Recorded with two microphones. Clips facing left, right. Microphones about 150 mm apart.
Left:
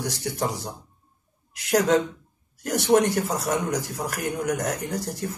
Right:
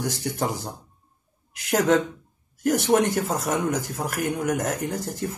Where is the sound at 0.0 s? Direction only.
20° right (ahead or behind).